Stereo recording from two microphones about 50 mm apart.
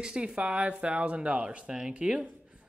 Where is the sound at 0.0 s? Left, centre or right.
Centre.